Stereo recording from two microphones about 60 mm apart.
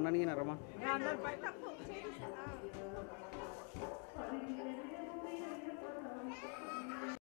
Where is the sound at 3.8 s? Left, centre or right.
Centre.